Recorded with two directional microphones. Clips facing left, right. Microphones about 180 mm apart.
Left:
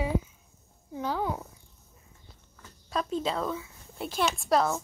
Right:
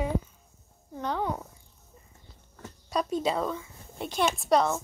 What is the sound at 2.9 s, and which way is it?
Speech, 10° right (ahead or behind).